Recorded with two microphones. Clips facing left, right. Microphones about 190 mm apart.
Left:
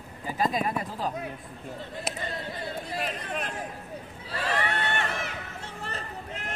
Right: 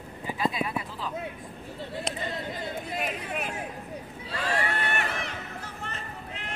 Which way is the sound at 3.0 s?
10° right (ahead or behind).